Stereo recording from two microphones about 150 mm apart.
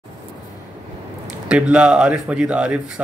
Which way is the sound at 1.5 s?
5° right (ahead or behind).